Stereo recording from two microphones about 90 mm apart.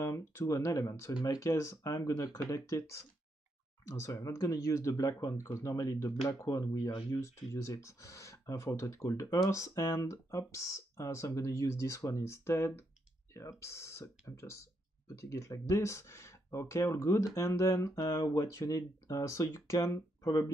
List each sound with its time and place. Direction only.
0.0 s speech: 30° left (ahead or behind)